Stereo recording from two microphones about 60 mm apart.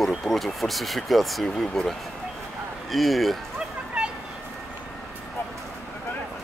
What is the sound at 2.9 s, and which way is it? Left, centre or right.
Speech, centre.